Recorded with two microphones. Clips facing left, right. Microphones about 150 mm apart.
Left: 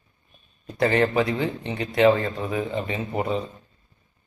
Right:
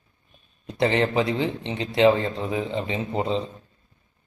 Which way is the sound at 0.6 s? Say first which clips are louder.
Left 1 dB; 20° right (ahead or behind).